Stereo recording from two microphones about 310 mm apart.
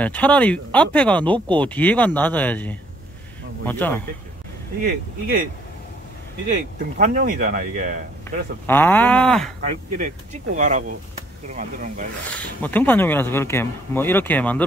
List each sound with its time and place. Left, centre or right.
0.0 s speech: centre
4.8 s speech: right
6.5 s speech: right
8.6 s speech: centre
9.7 s speech: right
12.3 s speech: centre